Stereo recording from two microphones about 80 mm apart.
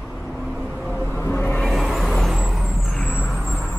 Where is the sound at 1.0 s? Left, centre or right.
Left.